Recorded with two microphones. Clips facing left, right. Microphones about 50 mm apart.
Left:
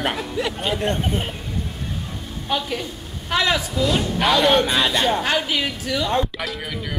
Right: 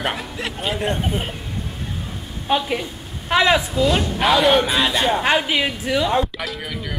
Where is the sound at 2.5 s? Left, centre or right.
Right.